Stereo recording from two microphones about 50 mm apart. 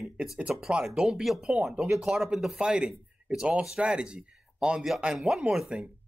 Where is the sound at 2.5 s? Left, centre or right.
Centre.